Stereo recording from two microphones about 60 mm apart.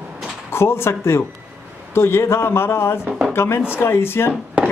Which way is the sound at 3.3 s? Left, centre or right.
Left.